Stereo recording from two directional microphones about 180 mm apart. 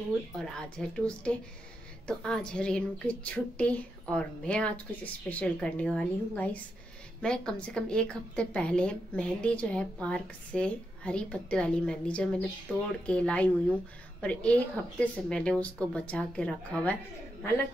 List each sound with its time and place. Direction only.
0.4 s a woman's voice: 5° left (ahead or behind)